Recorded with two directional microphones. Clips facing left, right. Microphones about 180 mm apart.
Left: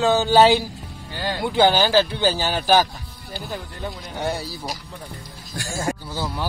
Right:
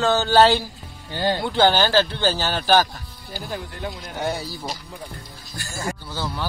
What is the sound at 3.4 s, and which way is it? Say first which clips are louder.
Speech: right 1 dB; centre (ahead or behind).